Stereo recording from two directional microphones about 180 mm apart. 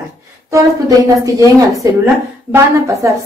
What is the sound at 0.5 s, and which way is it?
A woman's voice, 20° right (ahead or behind).